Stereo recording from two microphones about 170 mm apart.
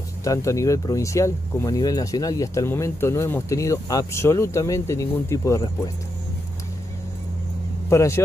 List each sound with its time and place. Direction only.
0.2 s speech: 20° left (ahead or behind)
7.9 s speech: 15° left (ahead or behind)